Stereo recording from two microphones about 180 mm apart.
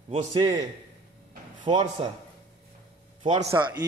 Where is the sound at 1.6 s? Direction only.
30° right (ahead or behind).